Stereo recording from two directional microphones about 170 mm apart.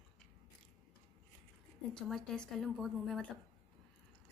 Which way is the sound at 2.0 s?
5° left (ahead or behind).